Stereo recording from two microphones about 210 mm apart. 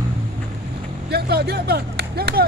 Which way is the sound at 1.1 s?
50° right (ahead or behind).